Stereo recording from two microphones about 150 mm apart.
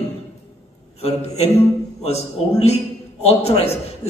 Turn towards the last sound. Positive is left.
turn(degrees=45)  # may be behind; listen again after turning